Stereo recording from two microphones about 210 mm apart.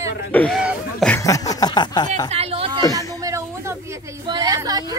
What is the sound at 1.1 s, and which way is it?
Speech, 15° left (ahead or behind).